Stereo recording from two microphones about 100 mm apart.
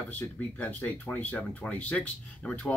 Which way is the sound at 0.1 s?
20° left (ahead or behind).